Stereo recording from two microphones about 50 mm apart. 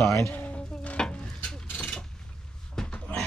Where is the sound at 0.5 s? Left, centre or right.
Left.